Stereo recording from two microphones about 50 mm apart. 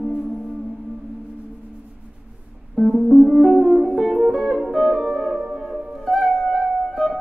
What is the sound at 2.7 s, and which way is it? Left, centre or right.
Music, centre.